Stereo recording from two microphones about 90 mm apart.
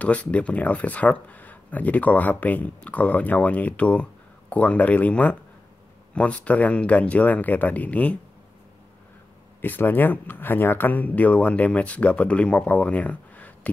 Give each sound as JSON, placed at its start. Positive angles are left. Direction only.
{"t": 0.0, "sound": "speech", "side_deg": 15}
{"t": 9.6, "sound": "speech", "side_deg": 20}